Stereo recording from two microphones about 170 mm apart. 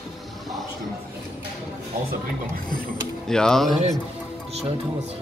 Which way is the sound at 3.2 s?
5° left (ahead or behind).